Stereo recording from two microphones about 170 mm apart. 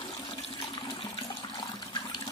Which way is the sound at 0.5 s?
30° left (ahead or behind).